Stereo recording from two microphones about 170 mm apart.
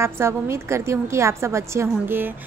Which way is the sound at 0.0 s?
15° right (ahead or behind).